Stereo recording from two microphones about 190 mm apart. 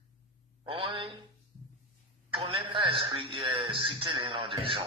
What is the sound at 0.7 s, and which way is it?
Speech, 30° right (ahead or behind).